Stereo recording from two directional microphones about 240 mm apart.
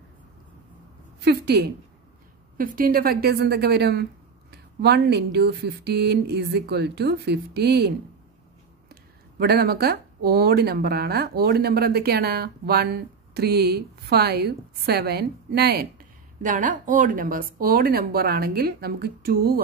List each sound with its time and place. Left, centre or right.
1.2 s a woman's voice: right
9.4 s speech: right